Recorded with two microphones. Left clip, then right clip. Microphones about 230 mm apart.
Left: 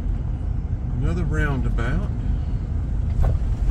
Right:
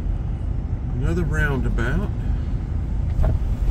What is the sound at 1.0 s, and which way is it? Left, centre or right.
Speech, right.